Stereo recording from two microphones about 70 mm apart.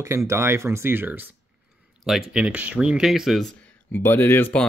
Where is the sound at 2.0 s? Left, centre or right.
Centre.